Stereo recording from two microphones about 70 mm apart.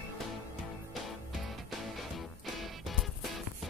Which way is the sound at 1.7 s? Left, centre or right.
Centre.